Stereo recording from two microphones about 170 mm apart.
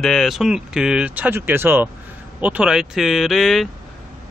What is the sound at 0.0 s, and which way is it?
Speech, 5° left (ahead or behind).